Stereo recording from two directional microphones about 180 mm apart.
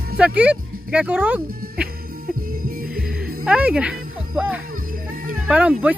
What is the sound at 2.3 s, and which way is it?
Music, 50° right (ahead or behind).